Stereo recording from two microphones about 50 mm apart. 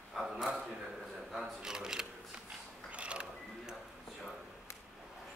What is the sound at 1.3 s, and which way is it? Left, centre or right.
Shuffling cards, centre.